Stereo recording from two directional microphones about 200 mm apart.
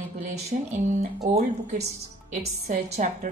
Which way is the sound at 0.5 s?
40° right (ahead or behind).